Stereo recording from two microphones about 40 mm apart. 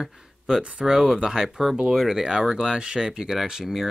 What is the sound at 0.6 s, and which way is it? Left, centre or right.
Speech, right.